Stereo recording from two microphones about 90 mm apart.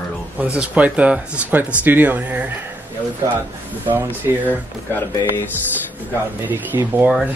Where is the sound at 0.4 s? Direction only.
15° right (ahead or behind).